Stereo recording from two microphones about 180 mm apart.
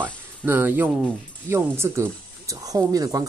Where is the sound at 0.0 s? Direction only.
10° right (ahead or behind).